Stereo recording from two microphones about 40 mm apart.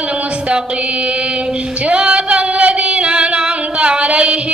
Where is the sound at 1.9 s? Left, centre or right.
Right.